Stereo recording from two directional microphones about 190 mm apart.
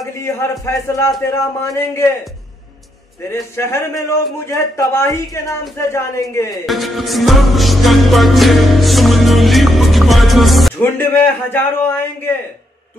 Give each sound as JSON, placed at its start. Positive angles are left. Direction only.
{"t": 0.2, "sound": "speech", "side_deg": 15}
{"t": 3.3, "sound": "speech", "side_deg": 15}
{"t": 6.5, "sound": "music", "side_deg": 0}
{"t": 10.8, "sound": "speech", "side_deg": 10}